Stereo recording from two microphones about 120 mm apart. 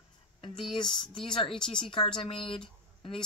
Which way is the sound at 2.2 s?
50° left (ahead or behind).